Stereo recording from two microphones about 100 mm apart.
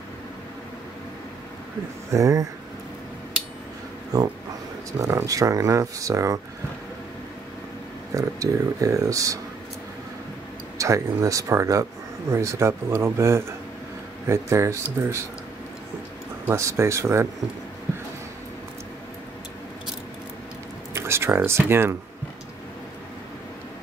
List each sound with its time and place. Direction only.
2.0 s speech: 35° right (ahead or behind)
5.0 s speech: 30° right (ahead or behind)
8.2 s speech: 35° right (ahead or behind)
10.8 s speech: 35° right (ahead or behind)
16.4 s speech: 30° right (ahead or behind)
20.9 s a sound: 25° right (ahead or behind)
21.5 s speech: 25° right (ahead or behind)